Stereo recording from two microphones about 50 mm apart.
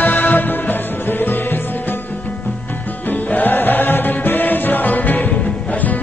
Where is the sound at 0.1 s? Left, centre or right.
Left.